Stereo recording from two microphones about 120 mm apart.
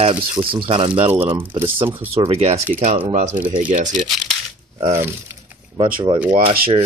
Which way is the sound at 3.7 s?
90° right.